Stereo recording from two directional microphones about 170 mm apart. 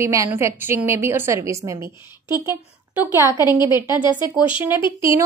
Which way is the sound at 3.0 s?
15° right (ahead or behind).